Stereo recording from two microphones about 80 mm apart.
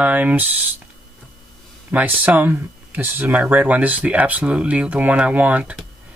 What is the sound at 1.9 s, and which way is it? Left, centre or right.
Speech, centre.